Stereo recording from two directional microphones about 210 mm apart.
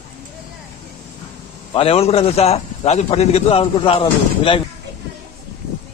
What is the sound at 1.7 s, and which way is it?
A man's voice, 30° left (ahead or behind).